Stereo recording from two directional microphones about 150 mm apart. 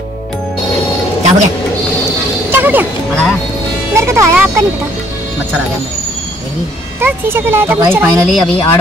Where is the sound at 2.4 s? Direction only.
15° right (ahead or behind).